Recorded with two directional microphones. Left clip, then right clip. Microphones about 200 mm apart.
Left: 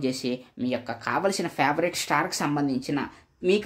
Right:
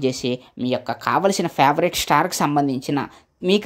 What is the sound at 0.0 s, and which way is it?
Speech, 30° right (ahead or behind).